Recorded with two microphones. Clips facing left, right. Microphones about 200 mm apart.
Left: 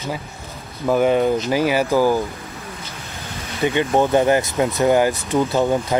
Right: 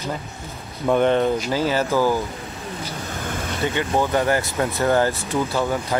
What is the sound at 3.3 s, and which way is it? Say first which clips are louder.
Vehicle: right 5 dB; 50° right (ahead or behind).